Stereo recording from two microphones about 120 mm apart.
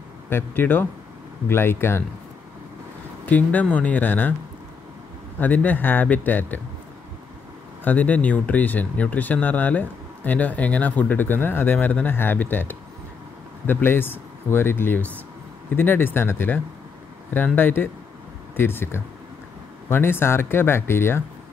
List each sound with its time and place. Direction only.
0.3 s speech: 20° left (ahead or behind)
3.3 s speech: 15° left (ahead or behind)
5.4 s speech: 15° left (ahead or behind)
7.8 s speech: 15° left (ahead or behind)